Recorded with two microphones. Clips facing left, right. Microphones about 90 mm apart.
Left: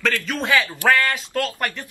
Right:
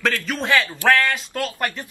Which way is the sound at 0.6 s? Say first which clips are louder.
Even; 15° left (ahead or behind).